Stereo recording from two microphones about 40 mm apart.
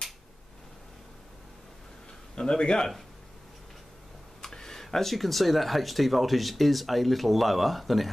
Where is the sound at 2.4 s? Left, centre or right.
Left.